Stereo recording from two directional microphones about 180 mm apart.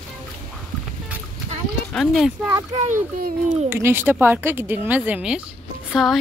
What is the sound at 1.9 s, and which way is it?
Speech, centre (ahead or behind).